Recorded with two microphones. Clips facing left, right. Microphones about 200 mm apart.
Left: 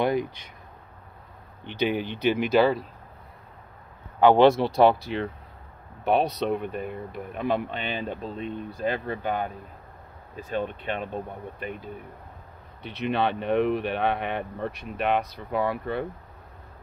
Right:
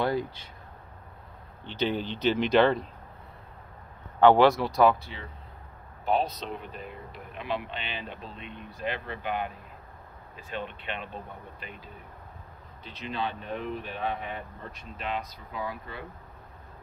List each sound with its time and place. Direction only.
0.0 s speech: 15° left (ahead or behind)
1.7 s speech: 10° left (ahead or behind)
4.2 s speech: 15° left (ahead or behind)
4.5 s speech: 30° left (ahead or behind)
5.0 s speech: 70° left (ahead or behind); by 11.9 s 55° left (ahead or behind)
12.8 s speech: 65° left (ahead or behind)